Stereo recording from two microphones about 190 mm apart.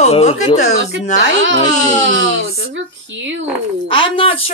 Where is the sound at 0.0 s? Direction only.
35° left (ahead or behind).